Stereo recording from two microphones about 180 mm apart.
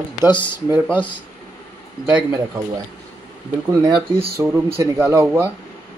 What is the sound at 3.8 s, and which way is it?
Speech, 30° right (ahead or behind).